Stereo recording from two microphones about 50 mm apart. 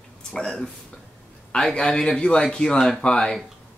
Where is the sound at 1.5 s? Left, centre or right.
Centre.